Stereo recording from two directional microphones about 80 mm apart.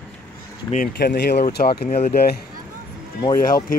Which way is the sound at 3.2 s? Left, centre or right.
Left.